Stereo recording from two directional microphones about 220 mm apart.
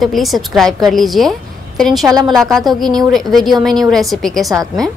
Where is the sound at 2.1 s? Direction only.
15° right (ahead or behind).